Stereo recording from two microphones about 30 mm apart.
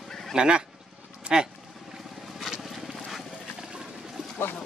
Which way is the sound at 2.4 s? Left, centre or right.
Centre.